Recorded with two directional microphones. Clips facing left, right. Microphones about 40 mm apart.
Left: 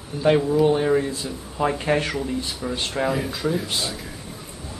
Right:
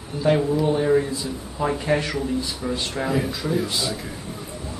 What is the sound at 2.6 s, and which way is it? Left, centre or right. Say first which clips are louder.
Speech: left 5 dB; centre.